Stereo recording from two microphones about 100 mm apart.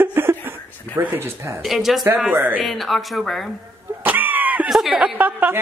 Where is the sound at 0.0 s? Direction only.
25° right (ahead or behind).